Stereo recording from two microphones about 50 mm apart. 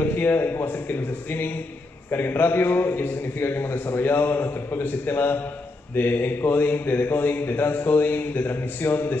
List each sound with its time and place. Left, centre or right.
0.0 s a man's voice: left